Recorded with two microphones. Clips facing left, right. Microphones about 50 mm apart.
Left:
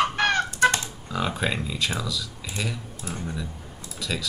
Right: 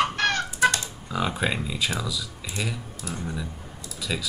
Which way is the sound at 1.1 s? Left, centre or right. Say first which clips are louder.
Even; centre.